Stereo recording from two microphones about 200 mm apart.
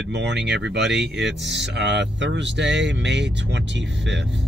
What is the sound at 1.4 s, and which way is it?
Speech, 60° right (ahead or behind).